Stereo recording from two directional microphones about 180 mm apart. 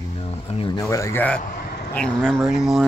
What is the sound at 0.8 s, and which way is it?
Speech, 15° left (ahead or behind).